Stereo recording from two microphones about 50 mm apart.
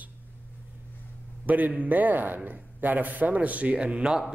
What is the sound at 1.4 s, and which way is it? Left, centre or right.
A man's voice, right.